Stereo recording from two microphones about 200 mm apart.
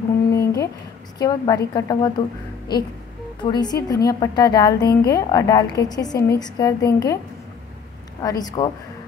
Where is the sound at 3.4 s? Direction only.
20° left (ahead or behind).